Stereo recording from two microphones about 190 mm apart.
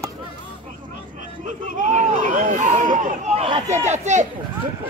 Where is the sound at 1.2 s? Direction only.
45° right (ahead or behind).